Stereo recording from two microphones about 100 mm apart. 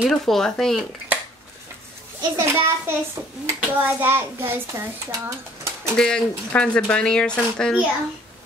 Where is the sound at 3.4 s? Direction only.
20° right (ahead or behind).